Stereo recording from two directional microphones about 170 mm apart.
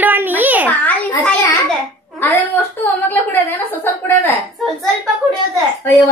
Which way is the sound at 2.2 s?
15° left (ahead or behind).